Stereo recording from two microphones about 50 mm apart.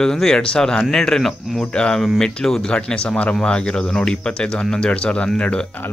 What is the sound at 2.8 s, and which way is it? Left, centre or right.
Speech, left.